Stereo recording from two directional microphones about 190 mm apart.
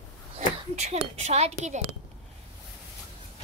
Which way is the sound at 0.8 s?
35° right (ahead or behind).